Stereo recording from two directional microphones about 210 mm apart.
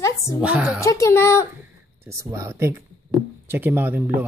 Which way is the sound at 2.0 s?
15° right (ahead or behind).